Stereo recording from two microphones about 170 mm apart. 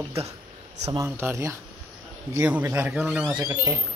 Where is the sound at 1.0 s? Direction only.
15° right (ahead or behind).